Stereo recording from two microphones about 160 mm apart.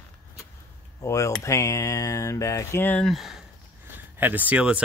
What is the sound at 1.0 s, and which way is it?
Speech, 20° left (ahead or behind).